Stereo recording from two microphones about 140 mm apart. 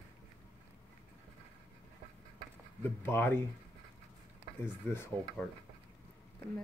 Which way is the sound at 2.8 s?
15° left (ahead or behind).